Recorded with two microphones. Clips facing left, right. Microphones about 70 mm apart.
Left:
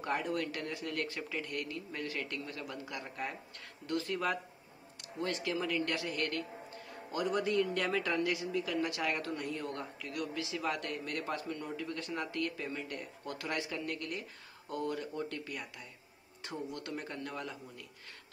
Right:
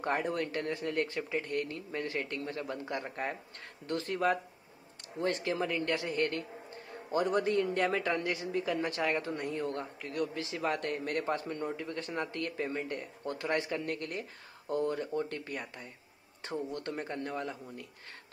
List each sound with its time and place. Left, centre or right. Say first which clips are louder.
0.0 s a man's voice: right 3 dB; right